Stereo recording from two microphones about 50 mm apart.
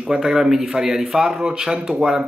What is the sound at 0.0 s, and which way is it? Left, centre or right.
Speech, centre.